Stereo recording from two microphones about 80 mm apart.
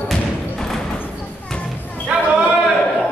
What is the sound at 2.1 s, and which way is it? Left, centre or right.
Basketball bounce, centre.